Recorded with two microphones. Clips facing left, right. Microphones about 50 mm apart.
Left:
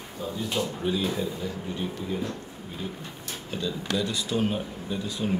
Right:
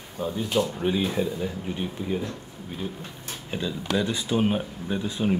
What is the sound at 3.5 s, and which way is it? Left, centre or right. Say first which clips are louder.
Speech: right 2 dB; right.